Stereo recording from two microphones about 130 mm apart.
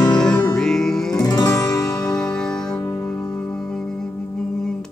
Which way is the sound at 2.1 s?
5° left (ahead or behind).